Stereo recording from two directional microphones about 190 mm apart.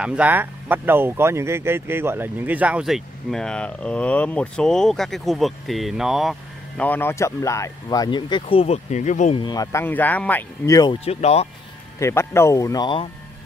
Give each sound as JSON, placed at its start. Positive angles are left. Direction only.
{"t": 0.0, "sound": "speech", "side_deg": -5}
{"t": 6.8, "sound": "speech", "side_deg": 10}
{"t": 9.4, "sound": "speech", "side_deg": 20}
{"t": 11.1, "sound": "speech", "side_deg": 35}
{"t": 12.0, "sound": "speech", "side_deg": 15}